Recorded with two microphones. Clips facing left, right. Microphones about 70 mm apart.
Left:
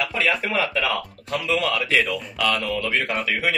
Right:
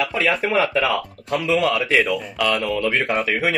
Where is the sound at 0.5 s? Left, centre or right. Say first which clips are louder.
Right 4 dB; centre.